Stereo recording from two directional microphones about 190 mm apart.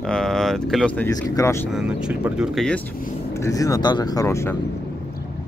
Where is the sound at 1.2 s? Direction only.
15° left (ahead or behind).